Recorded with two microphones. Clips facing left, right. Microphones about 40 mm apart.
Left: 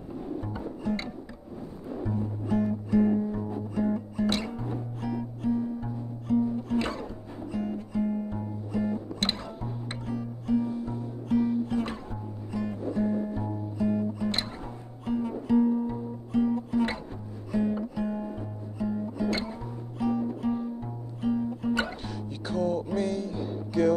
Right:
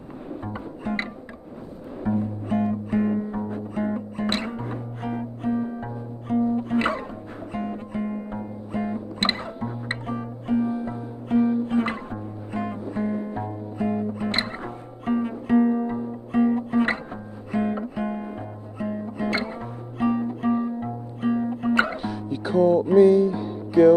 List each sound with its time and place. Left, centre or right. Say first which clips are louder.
0.5 s music: right 3 dB; right
2.0 s music: right 6 dB; right
11.0 s music: right 4 dB; right
21.9 s music: right 8 dB; centre